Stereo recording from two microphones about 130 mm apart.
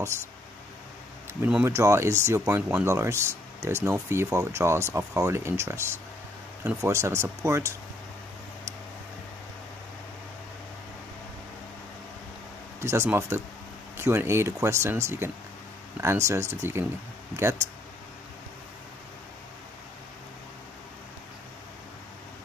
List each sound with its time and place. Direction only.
1.4 s speech: 15° right (ahead or behind)
12.8 s speech: 20° right (ahead or behind)